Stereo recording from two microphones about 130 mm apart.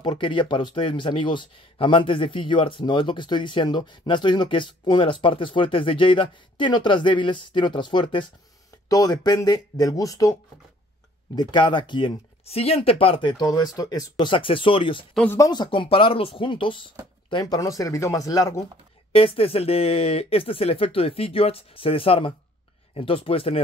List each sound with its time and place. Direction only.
0.0 s speech: 40° left (ahead or behind)
8.8 s speech: 30° left (ahead or behind)
11.3 s speech: 35° left (ahead or behind)
12.4 s speech: 50° left (ahead or behind)
15.3 s speech: 30° left (ahead or behind)
19.1 s speech: 45° left (ahead or behind)